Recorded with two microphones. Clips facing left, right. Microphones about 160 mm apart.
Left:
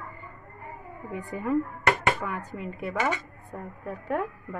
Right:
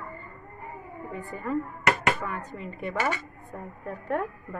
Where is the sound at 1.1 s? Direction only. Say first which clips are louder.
Left 3 dB; 15° left (ahead or behind).